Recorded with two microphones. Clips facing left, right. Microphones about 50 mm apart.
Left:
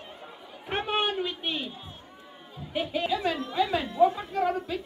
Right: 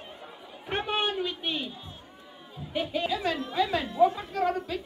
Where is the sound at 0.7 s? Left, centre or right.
Centre.